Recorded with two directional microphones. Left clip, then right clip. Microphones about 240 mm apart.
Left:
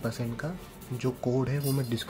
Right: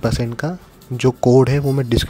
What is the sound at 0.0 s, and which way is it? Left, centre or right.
Speech, right.